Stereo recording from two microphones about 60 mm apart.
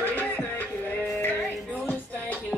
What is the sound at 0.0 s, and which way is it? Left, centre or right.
Music, left.